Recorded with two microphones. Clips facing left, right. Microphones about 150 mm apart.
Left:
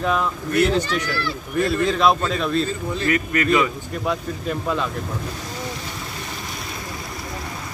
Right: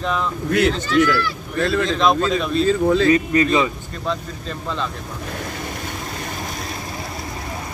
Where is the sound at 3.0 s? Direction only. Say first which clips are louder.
Right 4 dB; 25° right (ahead or behind).